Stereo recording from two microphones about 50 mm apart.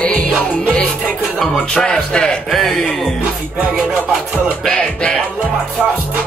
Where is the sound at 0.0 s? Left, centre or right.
Left.